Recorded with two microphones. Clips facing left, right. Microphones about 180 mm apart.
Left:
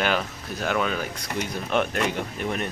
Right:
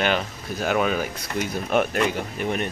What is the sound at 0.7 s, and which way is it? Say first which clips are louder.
Speech: right 4 dB; 10° right (ahead or behind).